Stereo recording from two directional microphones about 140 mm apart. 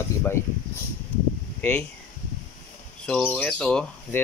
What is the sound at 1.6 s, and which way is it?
Speech, 10° left (ahead or behind).